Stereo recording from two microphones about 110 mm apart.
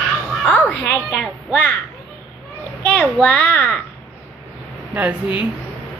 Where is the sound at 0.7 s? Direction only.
10° left (ahead or behind).